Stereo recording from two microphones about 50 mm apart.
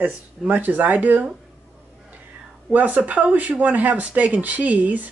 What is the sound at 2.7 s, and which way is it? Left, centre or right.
Speech, right.